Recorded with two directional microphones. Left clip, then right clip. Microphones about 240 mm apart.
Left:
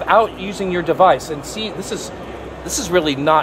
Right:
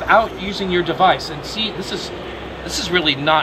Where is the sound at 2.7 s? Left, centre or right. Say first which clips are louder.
Even; left.